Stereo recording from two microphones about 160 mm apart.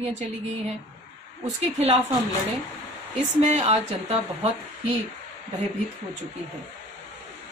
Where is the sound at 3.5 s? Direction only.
40° right (ahead or behind).